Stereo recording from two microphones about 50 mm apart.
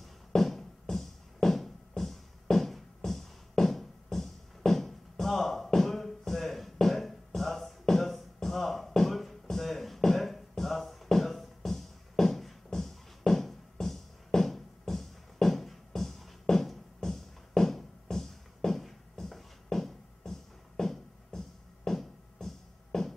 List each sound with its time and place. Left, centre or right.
0.0 s music: centre